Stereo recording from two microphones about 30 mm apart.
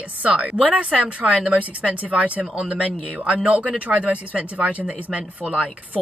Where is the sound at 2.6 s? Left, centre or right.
Right.